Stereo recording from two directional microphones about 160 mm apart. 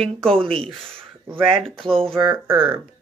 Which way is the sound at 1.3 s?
35° right (ahead or behind).